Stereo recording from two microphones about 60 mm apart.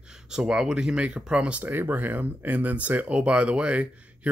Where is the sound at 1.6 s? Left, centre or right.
Right.